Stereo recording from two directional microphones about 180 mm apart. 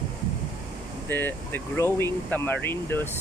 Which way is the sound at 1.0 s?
10° left (ahead or behind).